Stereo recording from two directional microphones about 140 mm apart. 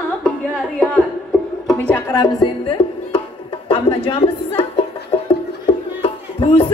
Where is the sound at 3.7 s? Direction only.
40° left (ahead or behind).